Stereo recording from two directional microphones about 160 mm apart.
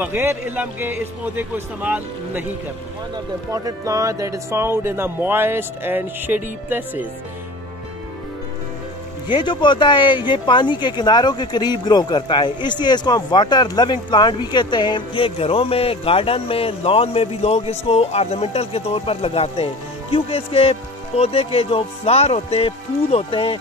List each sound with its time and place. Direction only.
0.0 s speech: 15° right (ahead or behind)
3.5 s speech: 20° right (ahead or behind)
9.3 s speech: 30° left (ahead or behind)